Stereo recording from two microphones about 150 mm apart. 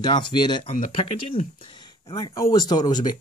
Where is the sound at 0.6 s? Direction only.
40° left (ahead or behind).